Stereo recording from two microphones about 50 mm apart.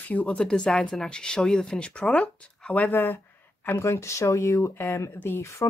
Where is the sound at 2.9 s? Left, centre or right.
Left.